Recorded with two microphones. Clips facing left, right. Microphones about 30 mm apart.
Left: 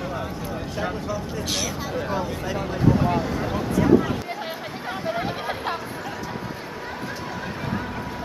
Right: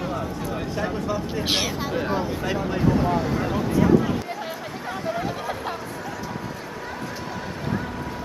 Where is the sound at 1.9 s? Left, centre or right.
Centre.